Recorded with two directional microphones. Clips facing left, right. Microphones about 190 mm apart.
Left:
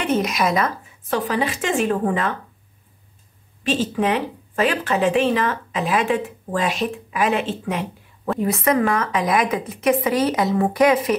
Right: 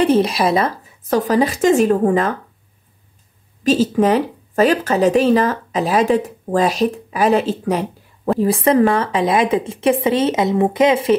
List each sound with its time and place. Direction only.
0.0 s speech: 30° right (ahead or behind)
3.6 s speech: 40° right (ahead or behind)